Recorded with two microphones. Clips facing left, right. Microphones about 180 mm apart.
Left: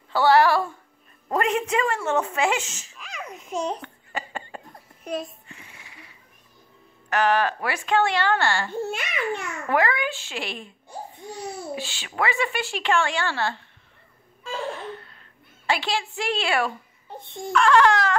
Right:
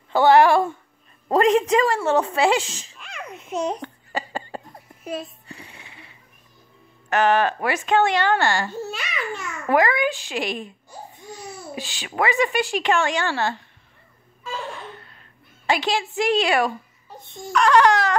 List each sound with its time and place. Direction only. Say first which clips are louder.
0.1 s a woman's voice: right 3 dB; 20° right (ahead or behind)
1.3 s speech: right 6 dB; 35° right (ahead or behind)
3.0 s babbling: even; centre (ahead or behind)
3.8 s a sound: right 4 dB; 35° right (ahead or behind)
5.0 s speech: even; centre (ahead or behind)
5.5 s a sound: right 5 dB; 30° right (ahead or behind)
7.1 s a woman's voice: right 3 dB; 25° right (ahead or behind)
8.7 s a child's voice: left 2 dB; 55° left (ahead or behind)
9.7 s a woman's voice: right 4 dB; 15° right (ahead or behind)
11.7 s a woman's voice: right 1 dB; 15° right (ahead or behind)
15.6 s a woman's voice: right 3 dB; 15° right (ahead or behind)
17.2 s a child's voice: left 3 dB; 60° left (ahead or behind)
17.5 s a woman's voice: right 1 dB; 20° right (ahead or behind)